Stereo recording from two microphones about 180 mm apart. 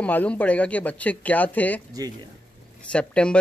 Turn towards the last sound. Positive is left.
turn(degrees=5)  # may be behind; listen again after turning